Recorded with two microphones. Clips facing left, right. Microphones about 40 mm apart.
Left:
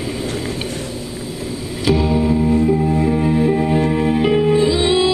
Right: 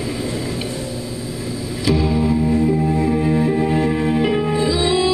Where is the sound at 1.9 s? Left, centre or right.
Left.